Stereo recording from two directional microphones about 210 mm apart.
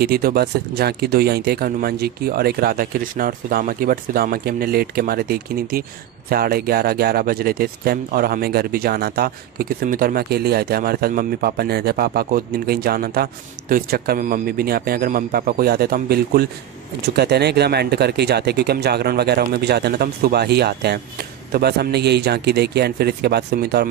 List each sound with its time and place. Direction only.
0.0 s speech: 45° right (ahead or behind)